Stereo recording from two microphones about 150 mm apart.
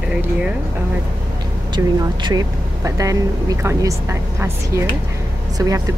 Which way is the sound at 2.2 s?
25° right (ahead or behind).